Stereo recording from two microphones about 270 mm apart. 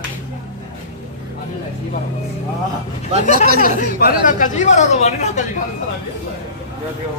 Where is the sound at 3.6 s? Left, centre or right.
Left.